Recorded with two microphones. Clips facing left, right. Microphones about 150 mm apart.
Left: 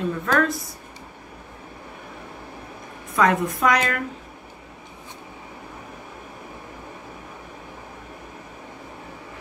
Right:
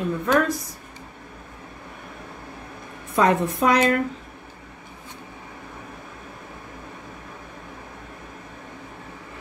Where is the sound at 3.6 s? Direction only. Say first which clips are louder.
Right 3 dB; 30° right (ahead or behind).